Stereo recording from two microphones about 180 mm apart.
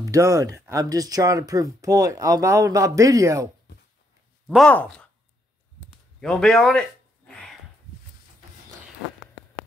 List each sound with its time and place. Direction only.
0.0 s speech: 15° right (ahead or behind)
4.6 s speech: 5° left (ahead or behind)
6.2 s a sound: 5° left (ahead or behind)